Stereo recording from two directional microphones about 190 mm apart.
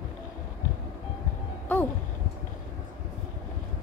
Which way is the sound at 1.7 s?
5° left (ahead or behind).